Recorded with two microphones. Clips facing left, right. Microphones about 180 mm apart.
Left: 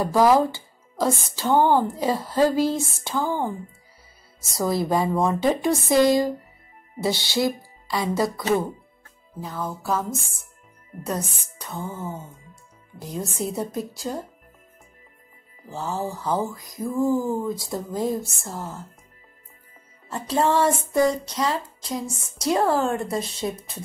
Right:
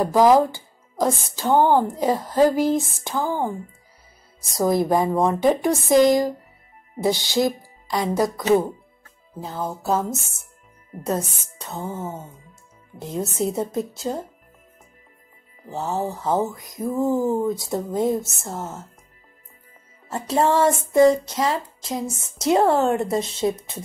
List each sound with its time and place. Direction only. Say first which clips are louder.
0.0 s speech: right 2 dB; 15° right (ahead or behind)
9.4 s child singing: right 2 dB; 25° right (ahead or behind)
11.1 s child singing: right 4 dB; 25° right (ahead or behind)
15.7 s child singing: right 3 dB; 20° right (ahead or behind)
20.1 s child singing: right 2 dB; 25° right (ahead or behind)